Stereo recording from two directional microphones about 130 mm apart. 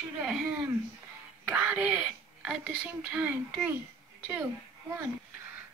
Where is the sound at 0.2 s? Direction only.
5° right (ahead or behind).